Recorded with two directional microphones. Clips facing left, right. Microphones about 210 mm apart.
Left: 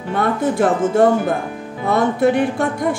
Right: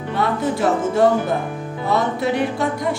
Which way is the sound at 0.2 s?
50° left (ahead or behind).